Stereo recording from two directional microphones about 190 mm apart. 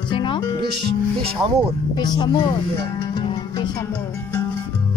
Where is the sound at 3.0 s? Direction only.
25° left (ahead or behind).